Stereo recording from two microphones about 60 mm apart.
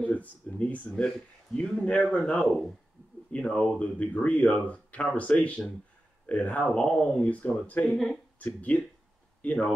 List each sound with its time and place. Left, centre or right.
0.0 s speech: left
7.2 s speech: left
7.9 s speech: centre
8.4 s speech: left